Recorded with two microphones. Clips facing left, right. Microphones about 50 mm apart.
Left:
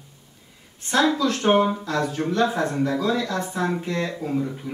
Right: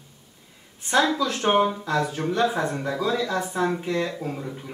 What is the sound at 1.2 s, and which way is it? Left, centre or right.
A man's voice, centre.